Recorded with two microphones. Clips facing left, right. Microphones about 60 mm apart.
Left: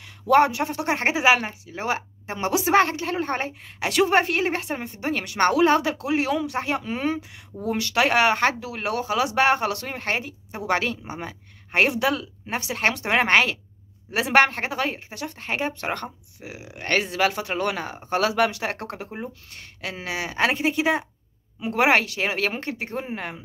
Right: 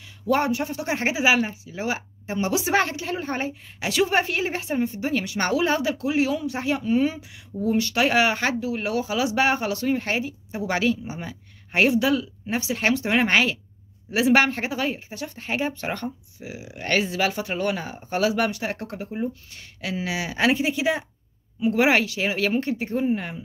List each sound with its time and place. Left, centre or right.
0.0 s a sound: left
0.5 s speech: left
2.6 s speech: left
7.7 s speech: left
8.5 s speech: left
19.0 s a woman's voice: left
22.5 s speech: left